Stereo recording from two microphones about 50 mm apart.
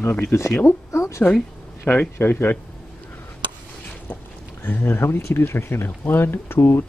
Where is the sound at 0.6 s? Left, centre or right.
Left.